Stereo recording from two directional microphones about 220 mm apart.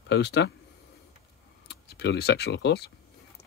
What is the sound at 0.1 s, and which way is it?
Speech, 50° left (ahead or behind).